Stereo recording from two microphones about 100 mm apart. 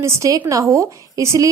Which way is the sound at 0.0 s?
35° right (ahead or behind).